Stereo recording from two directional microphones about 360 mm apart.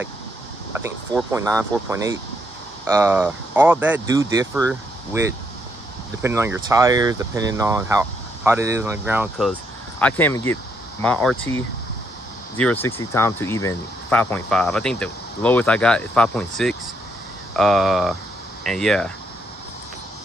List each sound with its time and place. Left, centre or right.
0.7 s speech: centre
6.2 s speech: centre